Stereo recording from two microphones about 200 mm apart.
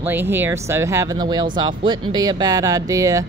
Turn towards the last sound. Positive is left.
turn(degrees=-15)  # may be behind; listen again after turning